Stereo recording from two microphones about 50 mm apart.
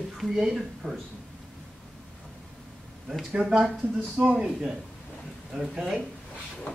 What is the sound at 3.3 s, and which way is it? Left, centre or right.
Speech, centre.